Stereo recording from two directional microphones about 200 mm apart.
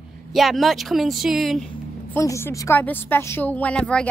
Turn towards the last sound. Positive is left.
turn(degrees=5)  # may be behind; listen again after turning